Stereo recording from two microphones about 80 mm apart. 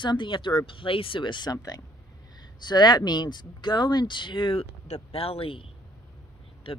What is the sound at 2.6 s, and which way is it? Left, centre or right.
Speech, left.